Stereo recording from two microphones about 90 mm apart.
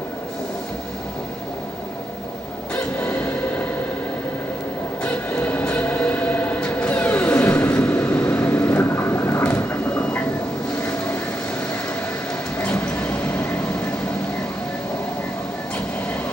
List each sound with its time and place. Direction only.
2.7 s a sound: 20° left (ahead or behind)
5.0 s train: 20° left (ahead or behind)
7.7 s vehicle: 20° left (ahead or behind)
13.0 s train: 20° left (ahead or behind)